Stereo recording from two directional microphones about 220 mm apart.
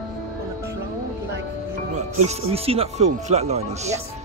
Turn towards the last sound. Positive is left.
turn(degrees=-30)  # may be behind; listen again after turning